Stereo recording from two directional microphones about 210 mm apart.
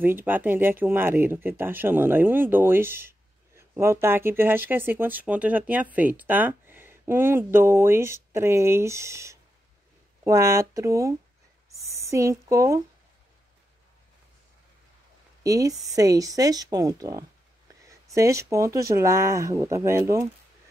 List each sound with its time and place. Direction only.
0.0 s speech: 10° right (ahead or behind)
11.7 s a sound: 15° right (ahead or behind)
15.4 s speech: 15° right (ahead or behind)